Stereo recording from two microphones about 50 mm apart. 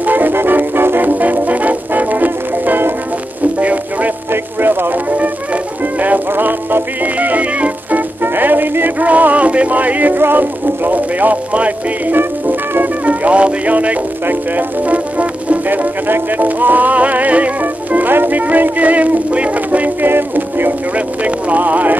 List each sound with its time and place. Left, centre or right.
0.0 s music: right
4.3 s music: right
5.1 s music: right
12.2 s music: right
13.0 s music: right
20.1 s music: right
21.2 s music: right